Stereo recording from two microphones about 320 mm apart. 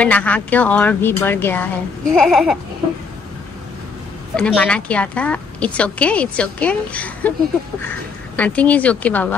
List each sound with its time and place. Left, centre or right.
0.0 s a woman's voice: centre
4.4 s a woman's voice: centre
8.4 s a woman's voice: centre